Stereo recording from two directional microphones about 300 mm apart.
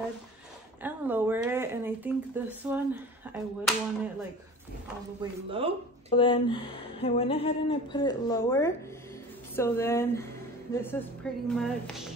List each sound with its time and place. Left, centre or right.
0.8 s speech: centre
5.2 s speech: centre
6.1 s speech: centre